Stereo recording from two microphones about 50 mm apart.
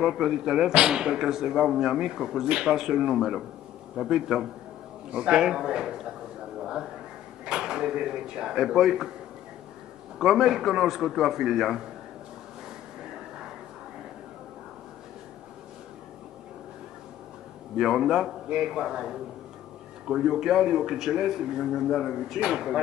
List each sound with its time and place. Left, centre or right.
0.0 s speech: centre
6.6 s a sound: centre
7.4 s speech: centre
10.1 s a man's voice: centre
13.0 s a sound: centre
17.7 s speech: centre